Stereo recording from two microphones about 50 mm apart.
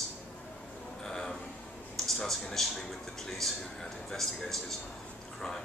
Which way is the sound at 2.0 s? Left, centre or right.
Centre.